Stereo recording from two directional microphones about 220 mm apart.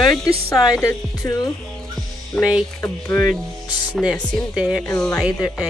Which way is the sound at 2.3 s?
5° right (ahead or behind).